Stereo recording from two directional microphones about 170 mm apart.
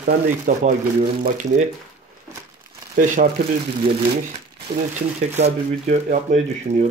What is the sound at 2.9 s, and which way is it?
Speech, 55° right (ahead or behind).